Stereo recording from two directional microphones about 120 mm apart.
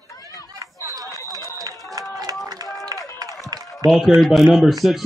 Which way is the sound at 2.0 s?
30° right (ahead or behind).